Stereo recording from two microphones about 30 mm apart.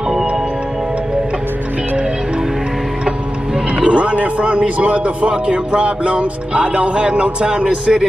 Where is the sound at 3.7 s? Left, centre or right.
Right.